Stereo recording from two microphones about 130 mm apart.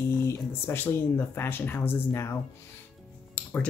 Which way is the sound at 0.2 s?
20° left (ahead or behind).